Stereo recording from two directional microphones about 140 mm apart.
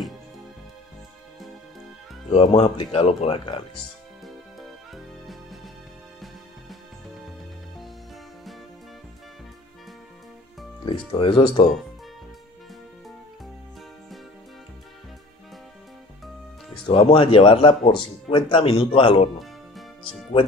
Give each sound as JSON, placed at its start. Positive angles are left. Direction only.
{"t": 2.5, "sound": "speech", "side_deg": 40}
{"t": 4.6, "sound": "music", "side_deg": 0}
{"t": 11.1, "sound": "speech", "side_deg": 35}
{"t": 16.7, "sound": "speech", "side_deg": 40}